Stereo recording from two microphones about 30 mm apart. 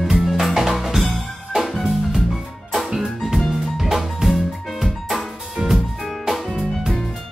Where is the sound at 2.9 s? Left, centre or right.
Centre.